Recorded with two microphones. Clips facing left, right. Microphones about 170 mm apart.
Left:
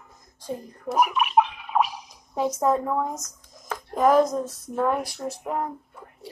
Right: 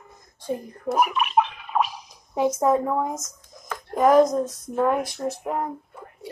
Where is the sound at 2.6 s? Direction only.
10° right (ahead or behind).